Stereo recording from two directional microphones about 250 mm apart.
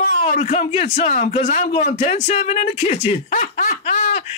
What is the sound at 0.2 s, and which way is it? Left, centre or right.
A man's voice, left.